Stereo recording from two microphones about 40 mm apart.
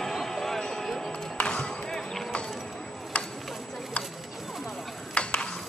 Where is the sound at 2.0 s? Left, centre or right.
Centre.